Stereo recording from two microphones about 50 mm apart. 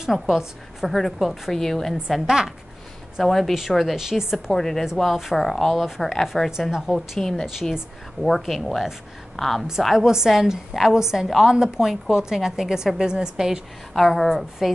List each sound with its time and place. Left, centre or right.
0.0 s a woman's voice: centre
2.0 s a woman's voice: centre
3.2 s a woman's voice: centre
4.5 s a woman's voice: centre
6.9 s a woman's voice: centre
9.9 s a woman's voice: centre
13.9 s a woman's voice: centre